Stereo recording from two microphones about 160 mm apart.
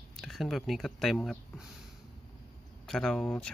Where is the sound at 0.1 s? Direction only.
Centre (ahead or behind).